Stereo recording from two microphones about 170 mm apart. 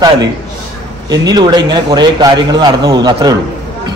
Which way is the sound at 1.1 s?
25° right (ahead or behind).